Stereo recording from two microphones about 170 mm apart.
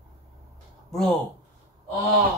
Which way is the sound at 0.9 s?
Centre (ahead or behind).